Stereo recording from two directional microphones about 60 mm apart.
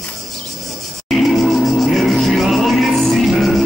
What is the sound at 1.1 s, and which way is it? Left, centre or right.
Music, centre.